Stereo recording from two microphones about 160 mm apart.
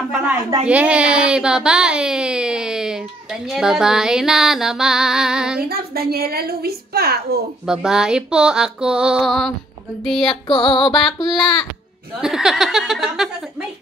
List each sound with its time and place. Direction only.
0.7 s speech: 10° right (ahead or behind)
5.7 s a woman's voice: 75° right (ahead or behind)
7.6 s speech: 5° right (ahead or behind)
10.2 s music: 30° left (ahead or behind)
10.9 s speech: centre (ahead or behind)